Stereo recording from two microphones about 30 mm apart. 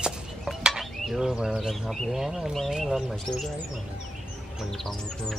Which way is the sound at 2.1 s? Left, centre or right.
Centre.